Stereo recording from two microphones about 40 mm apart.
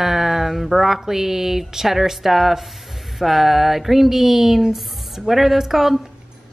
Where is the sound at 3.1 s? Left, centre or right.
Centre.